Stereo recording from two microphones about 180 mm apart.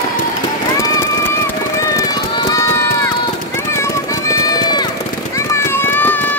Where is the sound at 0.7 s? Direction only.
20° left (ahead or behind).